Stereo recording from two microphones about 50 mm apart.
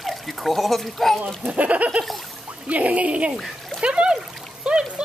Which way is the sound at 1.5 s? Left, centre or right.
Right.